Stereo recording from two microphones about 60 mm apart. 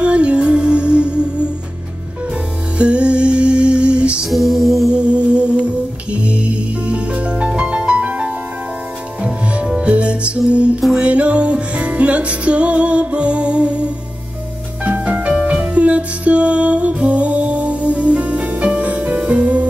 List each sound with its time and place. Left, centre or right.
0.0 s music: centre
2.8 s music: centre
4.3 s music: centre
4.9 s music: centre
9.7 s music: centre